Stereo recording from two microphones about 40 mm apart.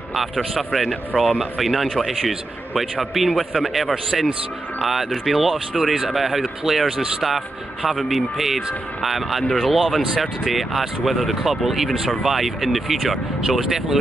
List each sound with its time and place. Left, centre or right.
0.6 s speech: centre